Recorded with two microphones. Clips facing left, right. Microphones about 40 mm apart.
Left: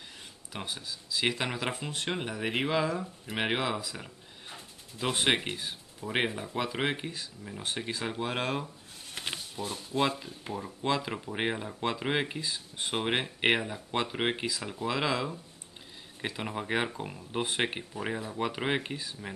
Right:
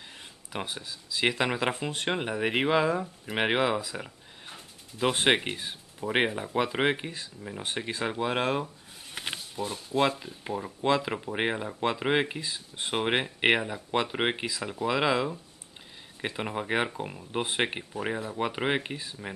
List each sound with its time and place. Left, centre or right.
0.5 s speech: centre